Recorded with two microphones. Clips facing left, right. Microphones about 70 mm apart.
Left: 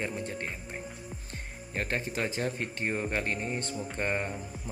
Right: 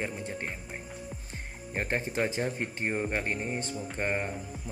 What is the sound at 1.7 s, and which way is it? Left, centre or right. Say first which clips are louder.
A man's voice: right 1 dB; right.